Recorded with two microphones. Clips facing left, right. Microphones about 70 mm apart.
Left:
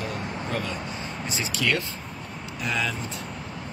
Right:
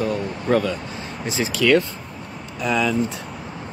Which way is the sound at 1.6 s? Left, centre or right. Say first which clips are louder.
Right 9 dB; right.